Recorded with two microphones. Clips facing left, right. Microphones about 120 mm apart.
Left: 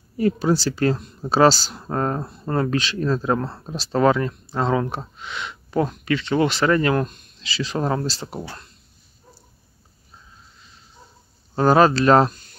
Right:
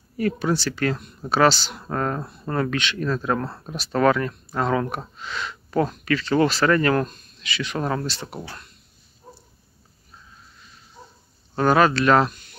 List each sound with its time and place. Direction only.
0.2 s speech: 35° left (ahead or behind)
1.8 s speech: 25° left (ahead or behind)
7.4 s speech: 30° left (ahead or behind)
11.5 s speech: 35° left (ahead or behind)